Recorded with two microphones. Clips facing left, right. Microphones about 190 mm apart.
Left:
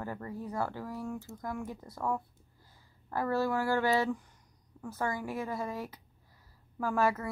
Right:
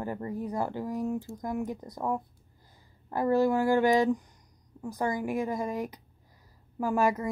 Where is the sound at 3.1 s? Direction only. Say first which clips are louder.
Right 6 dB; 15° right (ahead or behind).